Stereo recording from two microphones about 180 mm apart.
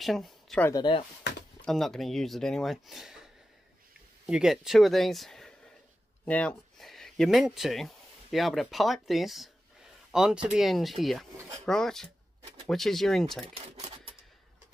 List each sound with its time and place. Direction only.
0.0 s speech: centre (ahead or behind)
0.7 s speech: 25° left (ahead or behind)
1.6 s speech: centre (ahead or behind)
4.3 s speech: 5° right (ahead or behind)